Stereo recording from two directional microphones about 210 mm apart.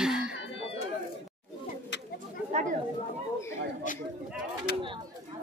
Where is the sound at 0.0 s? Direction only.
5° right (ahead or behind).